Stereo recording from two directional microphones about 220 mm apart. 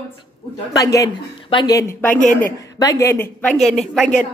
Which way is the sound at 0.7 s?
15° left (ahead or behind).